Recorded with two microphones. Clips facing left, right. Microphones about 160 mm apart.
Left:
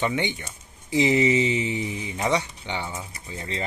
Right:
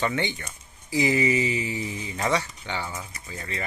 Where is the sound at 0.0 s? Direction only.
15° left (ahead or behind).